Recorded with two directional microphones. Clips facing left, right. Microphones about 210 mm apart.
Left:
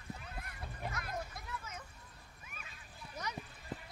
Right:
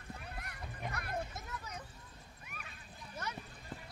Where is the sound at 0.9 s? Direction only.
60° right (ahead or behind).